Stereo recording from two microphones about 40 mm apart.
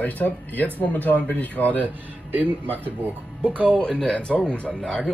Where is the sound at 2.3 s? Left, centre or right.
Right.